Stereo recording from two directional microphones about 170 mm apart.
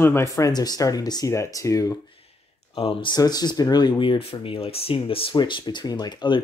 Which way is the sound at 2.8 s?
30° left (ahead or behind).